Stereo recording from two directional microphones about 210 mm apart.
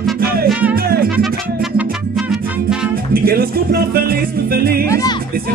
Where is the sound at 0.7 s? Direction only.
45° right (ahead or behind).